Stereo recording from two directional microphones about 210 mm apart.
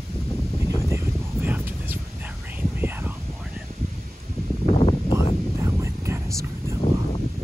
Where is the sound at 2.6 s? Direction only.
10° right (ahead or behind).